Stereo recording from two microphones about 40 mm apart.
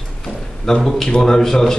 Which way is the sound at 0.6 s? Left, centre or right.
Centre.